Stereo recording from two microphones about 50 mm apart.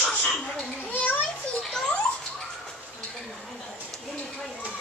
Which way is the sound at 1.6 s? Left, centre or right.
Centre.